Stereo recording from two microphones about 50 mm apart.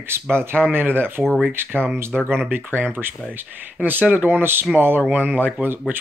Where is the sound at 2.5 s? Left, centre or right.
Right.